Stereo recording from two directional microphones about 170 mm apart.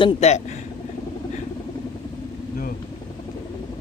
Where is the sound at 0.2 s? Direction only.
40° left (ahead or behind).